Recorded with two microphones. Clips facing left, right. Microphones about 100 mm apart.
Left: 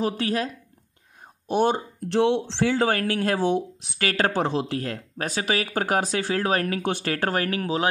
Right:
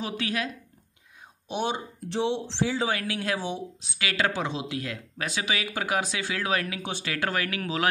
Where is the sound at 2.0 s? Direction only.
60° left (ahead or behind).